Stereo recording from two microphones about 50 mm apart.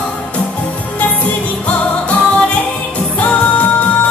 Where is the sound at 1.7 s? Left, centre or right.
Left.